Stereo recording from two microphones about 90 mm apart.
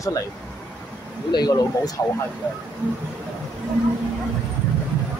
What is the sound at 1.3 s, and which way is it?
Speech, 50° left (ahead or behind).